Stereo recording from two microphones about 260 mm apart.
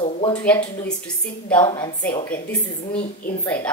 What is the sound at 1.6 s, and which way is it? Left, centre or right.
Speech, centre.